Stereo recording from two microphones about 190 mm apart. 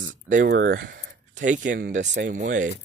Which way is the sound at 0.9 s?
55° right (ahead or behind).